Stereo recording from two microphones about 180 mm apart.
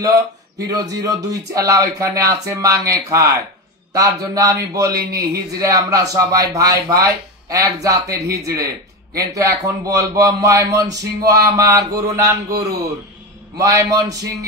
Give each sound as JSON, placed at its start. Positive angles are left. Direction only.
{"t": 0.7, "sound": "a man's voice", "side_deg": -20}
{"t": 4.9, "sound": "speech", "side_deg": -60}
{"t": 5.6, "sound": "a man's voice", "side_deg": -20}